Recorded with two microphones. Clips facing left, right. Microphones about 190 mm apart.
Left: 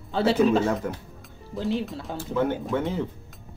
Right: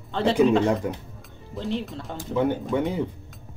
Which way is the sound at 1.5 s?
Centre (ahead or behind).